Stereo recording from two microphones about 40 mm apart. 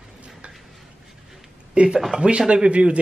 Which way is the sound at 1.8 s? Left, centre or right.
Right.